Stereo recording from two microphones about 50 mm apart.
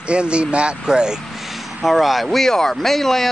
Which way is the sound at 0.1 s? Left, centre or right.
Right.